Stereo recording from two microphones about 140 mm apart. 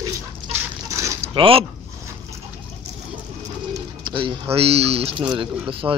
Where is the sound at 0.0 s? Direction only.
20° right (ahead or behind).